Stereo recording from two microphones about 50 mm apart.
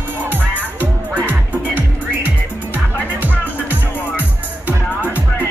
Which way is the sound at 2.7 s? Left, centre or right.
Right.